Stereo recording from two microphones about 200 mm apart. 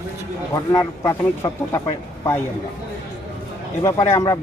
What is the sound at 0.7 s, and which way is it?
Speech, 15° left (ahead or behind).